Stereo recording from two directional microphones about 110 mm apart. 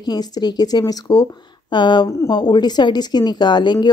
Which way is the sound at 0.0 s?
40° left (ahead or behind).